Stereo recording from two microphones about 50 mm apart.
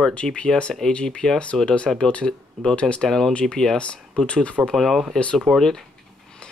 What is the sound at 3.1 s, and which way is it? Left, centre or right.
Speech, centre.